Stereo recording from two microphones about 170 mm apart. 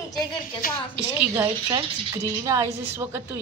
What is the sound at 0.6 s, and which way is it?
Speech, 60° left (ahead or behind).